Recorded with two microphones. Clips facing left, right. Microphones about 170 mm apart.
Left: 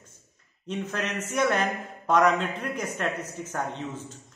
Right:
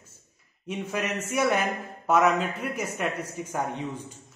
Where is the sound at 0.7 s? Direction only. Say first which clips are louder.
Right 1 dB; 10° right (ahead or behind).